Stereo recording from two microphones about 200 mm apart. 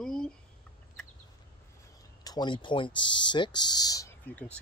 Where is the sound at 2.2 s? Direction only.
20° left (ahead or behind).